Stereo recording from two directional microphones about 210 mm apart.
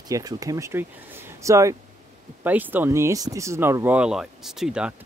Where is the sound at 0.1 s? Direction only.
15° right (ahead or behind).